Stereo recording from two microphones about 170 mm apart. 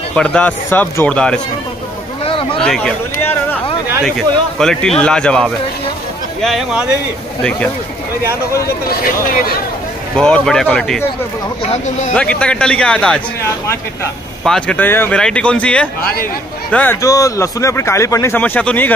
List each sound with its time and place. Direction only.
0.1 s speech: 5° left (ahead or behind)
2.6 s speech: 5° left (ahead or behind)
10.1 s speech: 5° left (ahead or behind)
11.7 s speech: 45° left (ahead or behind)
12.2 s speech: 5° left (ahead or behind)
14.4 s speech: 5° left (ahead or behind)
16.0 s speech: 60° left (ahead or behind)
16.7 s speech: 10° left (ahead or behind)